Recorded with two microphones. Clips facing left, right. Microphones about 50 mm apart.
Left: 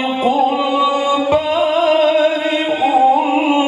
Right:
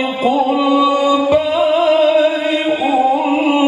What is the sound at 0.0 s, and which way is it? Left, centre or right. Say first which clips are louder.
Tabla: even; left.